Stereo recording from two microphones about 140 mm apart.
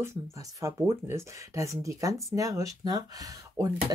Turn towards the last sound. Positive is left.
turn(degrees=-25)  # may be behind; listen again after turning